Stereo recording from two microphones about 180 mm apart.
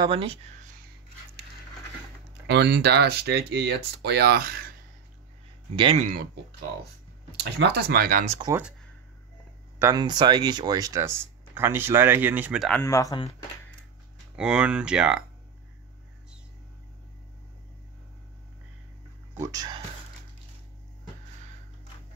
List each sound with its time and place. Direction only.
0.0 s speech: 30° right (ahead or behind)
2.4 s speech: 75° right (ahead or behind); by 4.7 s 55° right (ahead or behind)
5.8 s speech: 30° right (ahead or behind)
7.3 s speech: 70° right (ahead or behind); by 8.3 s 55° right (ahead or behind)
8.3 s speech: 25° right (ahead or behind)
9.8 s speech: 20° right (ahead or behind)
12.6 s speech: 10° left (ahead or behind)
14.3 s speech: 5° right (ahead or behind)
19.3 s speech: 15° right (ahead or behind)